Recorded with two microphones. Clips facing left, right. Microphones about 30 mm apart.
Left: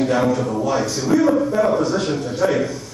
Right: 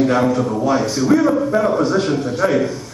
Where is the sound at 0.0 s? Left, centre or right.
Centre.